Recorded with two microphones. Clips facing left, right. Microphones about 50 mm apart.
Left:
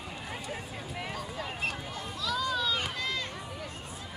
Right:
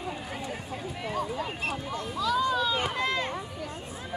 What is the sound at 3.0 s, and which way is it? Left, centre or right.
Run, right.